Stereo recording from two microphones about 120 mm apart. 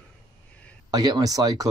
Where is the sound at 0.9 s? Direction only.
35° right (ahead or behind).